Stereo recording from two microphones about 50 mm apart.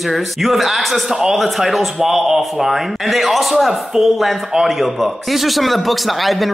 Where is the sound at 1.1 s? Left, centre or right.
Centre.